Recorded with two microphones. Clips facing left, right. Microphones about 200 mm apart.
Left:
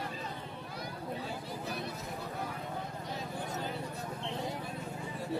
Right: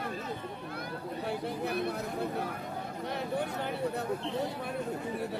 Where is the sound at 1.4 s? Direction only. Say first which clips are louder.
Right 7 dB; 60° right (ahead or behind).